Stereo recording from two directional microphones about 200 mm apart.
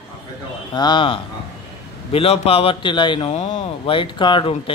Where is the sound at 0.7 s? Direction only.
20° left (ahead or behind).